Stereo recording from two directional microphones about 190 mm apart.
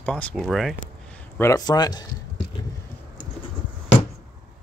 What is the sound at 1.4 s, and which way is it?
Speech, 20° left (ahead or behind).